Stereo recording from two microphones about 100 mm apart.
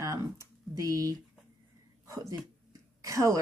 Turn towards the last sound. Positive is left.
turn(degrees=-35)  # may be behind; listen again after turning